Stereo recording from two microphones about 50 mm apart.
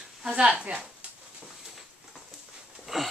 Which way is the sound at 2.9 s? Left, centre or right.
Centre.